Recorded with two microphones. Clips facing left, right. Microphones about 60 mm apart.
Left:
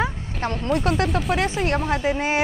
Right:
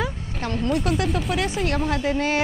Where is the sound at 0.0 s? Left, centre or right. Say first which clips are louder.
Left 3 dB; left.